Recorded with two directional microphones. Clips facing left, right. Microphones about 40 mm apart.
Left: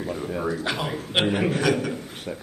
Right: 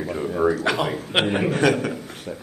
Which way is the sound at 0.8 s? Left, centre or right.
Right.